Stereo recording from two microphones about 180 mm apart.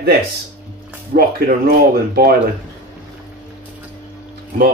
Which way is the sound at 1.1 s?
55° right (ahead or behind).